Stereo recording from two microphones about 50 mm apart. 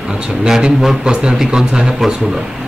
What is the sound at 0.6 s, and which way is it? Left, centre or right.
A man's voice, centre.